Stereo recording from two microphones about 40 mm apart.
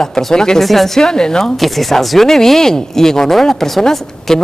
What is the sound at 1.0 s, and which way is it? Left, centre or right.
Speech, centre.